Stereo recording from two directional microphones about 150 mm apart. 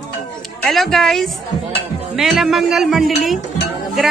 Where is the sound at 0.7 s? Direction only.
Centre (ahead or behind).